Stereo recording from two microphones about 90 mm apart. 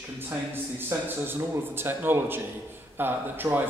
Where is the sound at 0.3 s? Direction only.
25° right (ahead or behind).